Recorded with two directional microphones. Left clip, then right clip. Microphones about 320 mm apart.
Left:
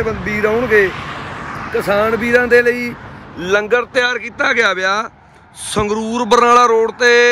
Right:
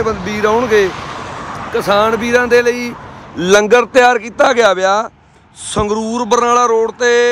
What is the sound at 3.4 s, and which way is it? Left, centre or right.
Speech, right.